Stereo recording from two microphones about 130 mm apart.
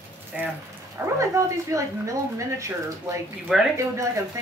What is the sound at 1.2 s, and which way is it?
Speech, 25° right (ahead or behind).